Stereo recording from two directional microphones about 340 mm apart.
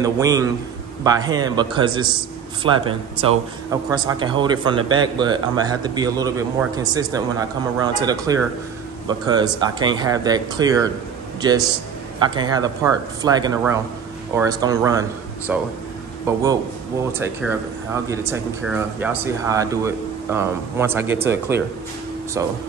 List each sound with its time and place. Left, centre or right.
0.0 s speech: centre
12.4 s speech: centre